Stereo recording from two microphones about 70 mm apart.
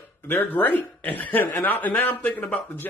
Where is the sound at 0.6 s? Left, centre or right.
Left.